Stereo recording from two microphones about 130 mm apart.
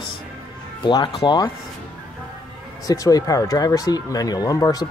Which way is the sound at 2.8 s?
30° left (ahead or behind).